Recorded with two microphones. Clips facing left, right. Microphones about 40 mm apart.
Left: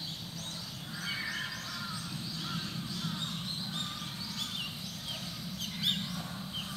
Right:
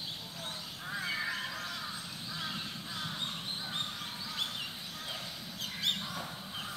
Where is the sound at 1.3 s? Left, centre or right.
Right.